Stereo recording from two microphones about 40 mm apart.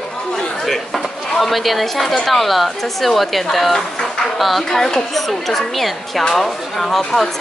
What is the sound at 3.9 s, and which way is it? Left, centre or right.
Music, centre.